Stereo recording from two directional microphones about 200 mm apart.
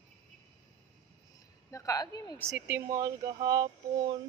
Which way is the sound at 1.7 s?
15° left (ahead or behind).